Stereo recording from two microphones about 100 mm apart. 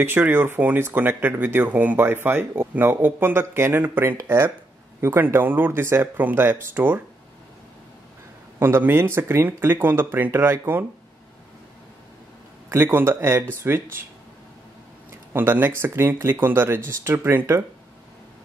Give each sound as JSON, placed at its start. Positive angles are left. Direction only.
{"t": 0.0, "sound": "speech", "side_deg": -20}
{"t": 8.5, "sound": "speech", "side_deg": -20}
{"t": 12.6, "sound": "speech", "side_deg": -25}
{"t": 15.3, "sound": "speech", "side_deg": -20}